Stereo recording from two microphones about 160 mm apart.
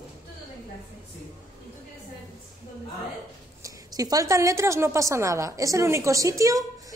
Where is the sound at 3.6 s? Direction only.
25° right (ahead or behind).